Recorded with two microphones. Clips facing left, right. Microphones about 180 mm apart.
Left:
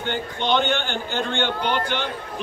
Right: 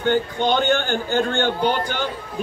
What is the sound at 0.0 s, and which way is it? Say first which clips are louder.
A man's voice: right 7 dB; 45° right (ahead or behind).